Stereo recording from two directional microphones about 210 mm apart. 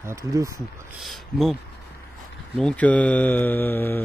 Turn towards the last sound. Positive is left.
turn(degrees=10)  # may be behind; listen again after turning